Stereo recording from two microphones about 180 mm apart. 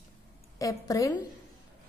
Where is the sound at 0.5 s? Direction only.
20° left (ahead or behind).